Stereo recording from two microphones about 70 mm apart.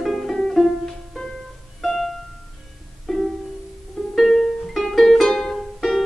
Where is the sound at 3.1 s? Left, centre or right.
Centre.